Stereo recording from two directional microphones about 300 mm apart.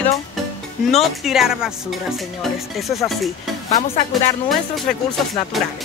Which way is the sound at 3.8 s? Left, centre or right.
Left.